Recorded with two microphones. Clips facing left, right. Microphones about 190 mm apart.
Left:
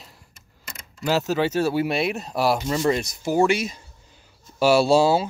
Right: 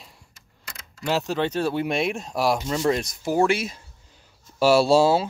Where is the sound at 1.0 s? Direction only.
5° left (ahead or behind).